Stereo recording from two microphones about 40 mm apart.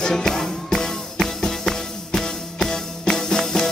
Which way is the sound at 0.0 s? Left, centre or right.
Centre.